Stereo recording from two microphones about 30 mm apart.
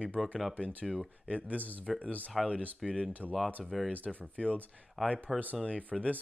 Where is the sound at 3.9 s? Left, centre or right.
Left.